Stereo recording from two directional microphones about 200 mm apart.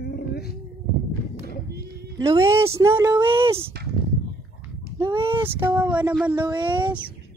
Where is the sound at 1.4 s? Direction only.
55° right (ahead or behind).